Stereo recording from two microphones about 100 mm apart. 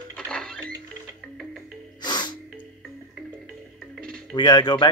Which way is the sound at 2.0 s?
45° left (ahead or behind).